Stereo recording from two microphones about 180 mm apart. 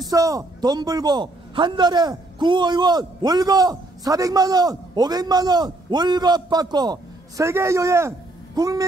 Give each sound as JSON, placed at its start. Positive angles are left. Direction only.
{"t": 0.0, "sound": "a man's voice", "side_deg": -20}